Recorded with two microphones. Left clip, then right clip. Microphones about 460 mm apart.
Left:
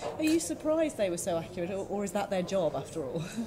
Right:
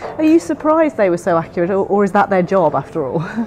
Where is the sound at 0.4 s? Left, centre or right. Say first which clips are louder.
Right 15 dB; right.